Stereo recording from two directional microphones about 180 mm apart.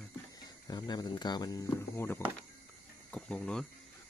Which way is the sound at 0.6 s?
20° left (ahead or behind).